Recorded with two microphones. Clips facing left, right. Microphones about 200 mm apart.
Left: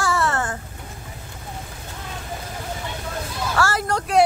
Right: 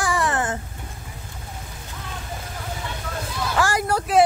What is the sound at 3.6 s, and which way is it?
Speech, 10° right (ahead or behind).